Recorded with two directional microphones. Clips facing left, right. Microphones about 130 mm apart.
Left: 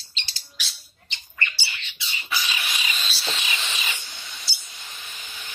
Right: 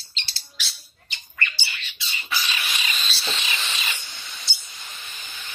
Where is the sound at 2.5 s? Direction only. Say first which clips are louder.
Even; 10° left (ahead or behind).